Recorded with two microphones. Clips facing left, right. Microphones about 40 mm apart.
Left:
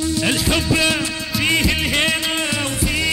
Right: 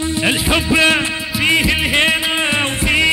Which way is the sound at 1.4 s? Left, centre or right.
Right.